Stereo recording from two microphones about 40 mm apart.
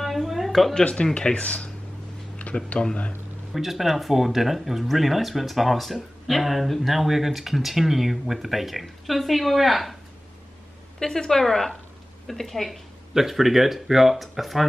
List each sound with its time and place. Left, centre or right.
0.0 s a sound: centre
0.5 s speech: centre
0.7 s speech: left
2.3 s a sound: left
3.5 s speech: centre
11.0 s a woman's voice: centre